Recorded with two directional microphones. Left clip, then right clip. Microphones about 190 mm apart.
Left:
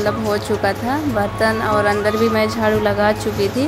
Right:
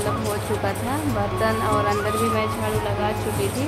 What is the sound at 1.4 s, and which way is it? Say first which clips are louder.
Speech: left 4 dB; 25° left (ahead or behind).